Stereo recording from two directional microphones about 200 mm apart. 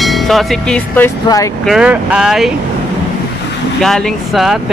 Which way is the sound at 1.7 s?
5° right (ahead or behind).